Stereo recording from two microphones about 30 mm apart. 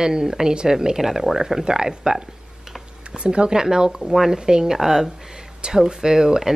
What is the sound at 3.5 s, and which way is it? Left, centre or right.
Speech, right.